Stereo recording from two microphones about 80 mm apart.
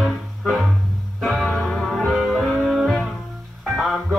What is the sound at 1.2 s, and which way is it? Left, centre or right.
Music, centre.